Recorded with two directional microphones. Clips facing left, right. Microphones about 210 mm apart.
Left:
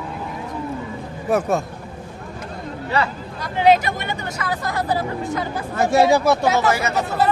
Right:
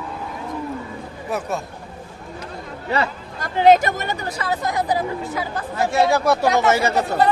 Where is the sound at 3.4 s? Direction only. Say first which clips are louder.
Right 2 dB; 45° right (ahead or behind).